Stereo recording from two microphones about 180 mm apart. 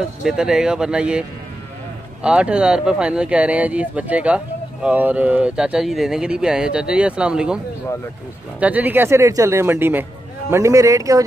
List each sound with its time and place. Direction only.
0.2 s speech: 5° right (ahead or behind)
2.2 s a man's voice: 5° right (ahead or behind)